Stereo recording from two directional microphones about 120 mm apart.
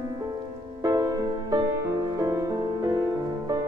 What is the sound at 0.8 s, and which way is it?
Music, 30° right (ahead or behind).